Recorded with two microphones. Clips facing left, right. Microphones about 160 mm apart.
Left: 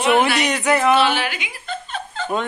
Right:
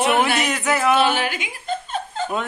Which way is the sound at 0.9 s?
45° right (ahead or behind).